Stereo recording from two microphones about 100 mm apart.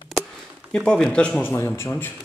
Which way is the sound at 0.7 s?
10° left (ahead or behind).